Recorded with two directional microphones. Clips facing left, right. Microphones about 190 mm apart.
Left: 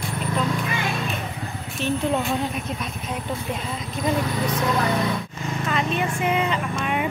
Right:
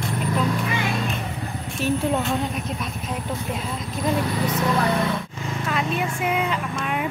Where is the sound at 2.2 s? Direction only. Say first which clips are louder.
Even; centre (ahead or behind).